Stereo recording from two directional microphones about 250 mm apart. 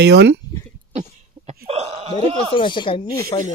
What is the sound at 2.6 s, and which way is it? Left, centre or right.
Speech, centre.